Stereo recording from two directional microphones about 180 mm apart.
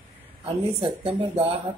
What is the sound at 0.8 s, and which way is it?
Speech, 30° right (ahead or behind).